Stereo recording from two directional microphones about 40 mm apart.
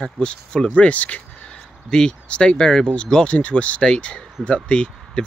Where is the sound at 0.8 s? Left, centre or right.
Left.